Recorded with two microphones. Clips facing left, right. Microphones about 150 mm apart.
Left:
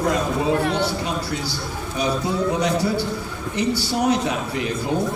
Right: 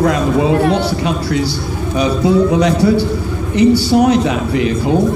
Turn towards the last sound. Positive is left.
turn(degrees=-90)